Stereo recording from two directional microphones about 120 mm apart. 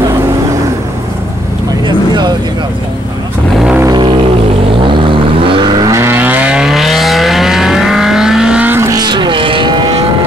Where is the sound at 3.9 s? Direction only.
45° right (ahead or behind).